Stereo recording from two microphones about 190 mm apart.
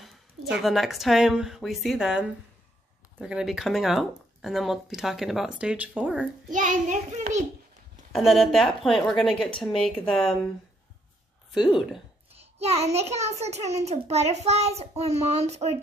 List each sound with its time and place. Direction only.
0.0 s a sound: centre (ahead or behind)
0.6 s speech: centre (ahead or behind)
6.5 s a child's voice: 45° right (ahead or behind)
8.1 s speech: centre (ahead or behind)
11.5 s speech: centre (ahead or behind)
12.3 s a child's voice: 35° right (ahead or behind)